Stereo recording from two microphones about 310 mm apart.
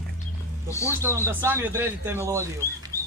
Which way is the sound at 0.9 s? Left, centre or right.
Centre.